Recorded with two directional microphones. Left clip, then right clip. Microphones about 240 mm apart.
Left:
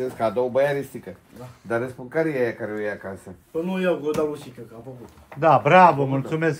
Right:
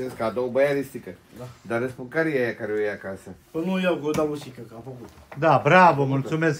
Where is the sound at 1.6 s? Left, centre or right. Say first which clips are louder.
Left 1 dB; centre.